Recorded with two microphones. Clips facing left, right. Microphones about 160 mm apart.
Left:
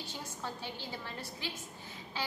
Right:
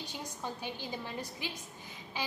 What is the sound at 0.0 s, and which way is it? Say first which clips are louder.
A woman's voice: right 1 dB; 15° right (ahead or behind).